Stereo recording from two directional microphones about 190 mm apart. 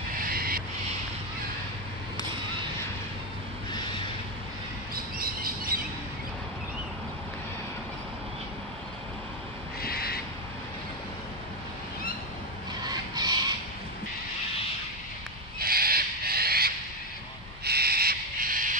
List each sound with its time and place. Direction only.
0.1 s vehicle: 50° right (ahead or behind)
4.9 s squawk: 50° right (ahead or behind)
9.8 s owl: 55° left (ahead or behind)
12.8 s a sound: 20° right (ahead or behind)
15.6 s owl: 50° right (ahead or behind)